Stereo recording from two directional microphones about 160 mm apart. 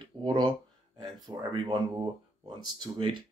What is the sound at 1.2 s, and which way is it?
Speech, 30° right (ahead or behind).